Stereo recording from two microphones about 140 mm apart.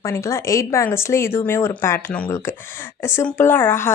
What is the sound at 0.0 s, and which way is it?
Speech, 20° left (ahead or behind).